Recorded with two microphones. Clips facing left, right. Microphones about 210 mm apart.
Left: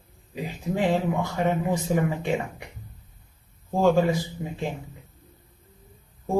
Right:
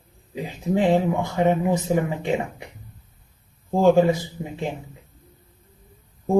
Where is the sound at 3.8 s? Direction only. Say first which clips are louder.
Right 4 dB; 20° right (ahead or behind).